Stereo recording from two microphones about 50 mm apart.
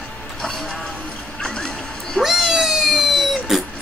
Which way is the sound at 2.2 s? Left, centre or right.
Centre.